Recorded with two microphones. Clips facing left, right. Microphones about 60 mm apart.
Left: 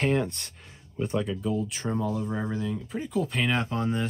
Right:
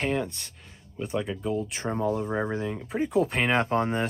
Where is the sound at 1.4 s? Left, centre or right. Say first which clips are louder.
Even; right.